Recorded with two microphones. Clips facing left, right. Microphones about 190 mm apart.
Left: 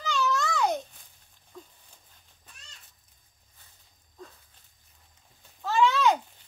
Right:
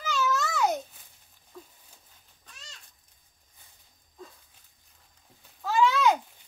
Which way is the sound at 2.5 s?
85° right.